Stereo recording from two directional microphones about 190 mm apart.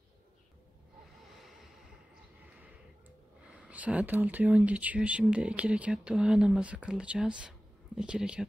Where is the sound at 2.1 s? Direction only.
5° right (ahead or behind).